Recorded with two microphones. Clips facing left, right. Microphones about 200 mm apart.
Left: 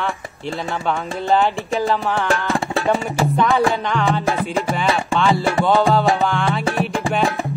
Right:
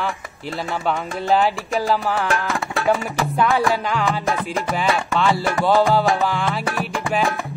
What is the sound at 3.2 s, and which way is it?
Music, centre (ahead or behind).